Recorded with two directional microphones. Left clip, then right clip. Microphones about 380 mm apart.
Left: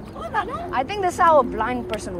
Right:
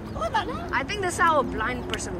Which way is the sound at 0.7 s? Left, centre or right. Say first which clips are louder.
Left 4 dB; centre.